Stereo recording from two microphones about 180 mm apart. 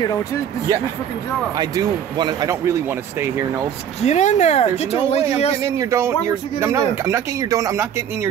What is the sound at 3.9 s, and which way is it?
Speech, 40° left (ahead or behind).